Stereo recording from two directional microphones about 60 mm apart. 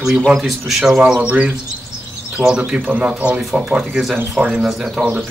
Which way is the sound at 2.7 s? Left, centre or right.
Right.